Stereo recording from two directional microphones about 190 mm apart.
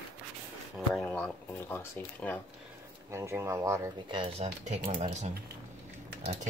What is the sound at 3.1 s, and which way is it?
Speech, 15° right (ahead or behind).